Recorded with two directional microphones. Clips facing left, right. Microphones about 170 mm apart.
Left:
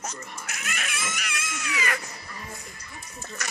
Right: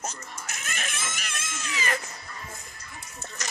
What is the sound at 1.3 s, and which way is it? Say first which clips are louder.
Cat: left 2 dB; 25° right (ahead or behind).